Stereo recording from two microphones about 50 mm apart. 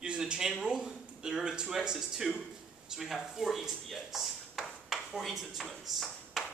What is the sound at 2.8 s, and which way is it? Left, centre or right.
Speech, centre.